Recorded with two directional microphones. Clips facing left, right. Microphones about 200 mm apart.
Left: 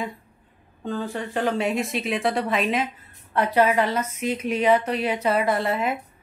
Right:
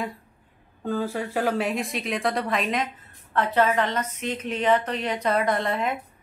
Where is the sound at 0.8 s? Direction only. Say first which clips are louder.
Right 1 dB; 10° right (ahead or behind).